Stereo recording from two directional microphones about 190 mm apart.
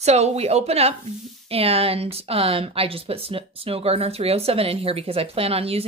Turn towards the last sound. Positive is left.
turn(degrees=-30)  # may be behind; listen again after turning